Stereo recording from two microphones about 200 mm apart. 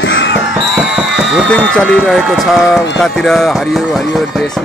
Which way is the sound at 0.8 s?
5° right (ahead or behind).